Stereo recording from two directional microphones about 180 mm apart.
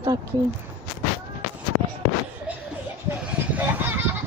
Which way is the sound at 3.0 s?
10° right (ahead or behind).